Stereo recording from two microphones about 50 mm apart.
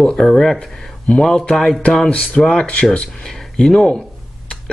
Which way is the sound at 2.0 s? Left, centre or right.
Left.